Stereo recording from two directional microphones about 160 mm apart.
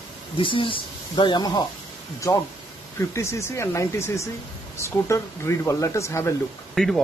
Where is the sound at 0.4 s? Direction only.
30° left (ahead or behind).